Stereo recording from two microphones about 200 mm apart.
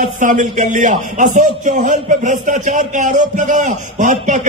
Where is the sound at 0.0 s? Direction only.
40° right (ahead or behind).